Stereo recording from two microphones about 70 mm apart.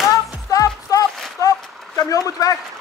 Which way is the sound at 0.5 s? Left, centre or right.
Left.